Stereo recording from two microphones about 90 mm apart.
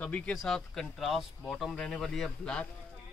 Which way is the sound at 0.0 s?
15° left (ahead or behind).